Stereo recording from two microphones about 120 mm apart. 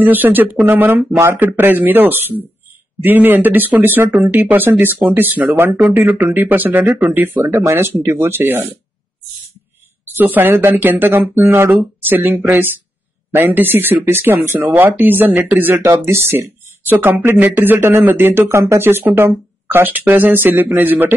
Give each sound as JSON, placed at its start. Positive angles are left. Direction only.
{"t": 0.0, "sound": "speech", "side_deg": -15}
{"t": 10.1, "sound": "speech", "side_deg": -15}